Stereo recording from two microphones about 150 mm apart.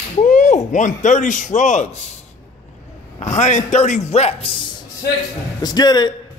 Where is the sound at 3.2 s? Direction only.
55° left (ahead or behind).